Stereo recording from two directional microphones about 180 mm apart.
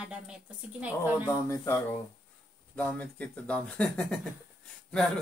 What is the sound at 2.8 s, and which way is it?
Speech, 10° left (ahead or behind).